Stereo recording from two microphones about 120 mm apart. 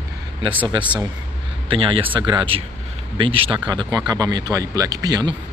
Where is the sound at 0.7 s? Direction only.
40° right (ahead or behind).